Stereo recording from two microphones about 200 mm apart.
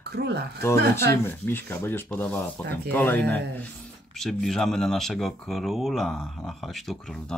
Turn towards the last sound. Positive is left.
turn(degrees=0)  # may be behind; listen again after turning